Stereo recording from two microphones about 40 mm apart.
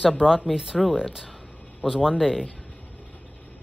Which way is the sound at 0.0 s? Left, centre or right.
Centre.